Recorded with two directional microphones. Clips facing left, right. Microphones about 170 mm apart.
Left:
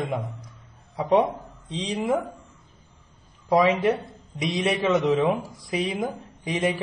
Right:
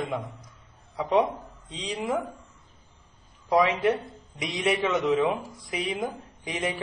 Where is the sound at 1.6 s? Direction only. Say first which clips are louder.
Left 4 dB; 30° left (ahead or behind).